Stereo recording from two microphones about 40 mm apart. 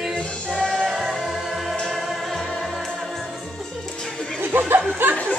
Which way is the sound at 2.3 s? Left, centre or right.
Centre.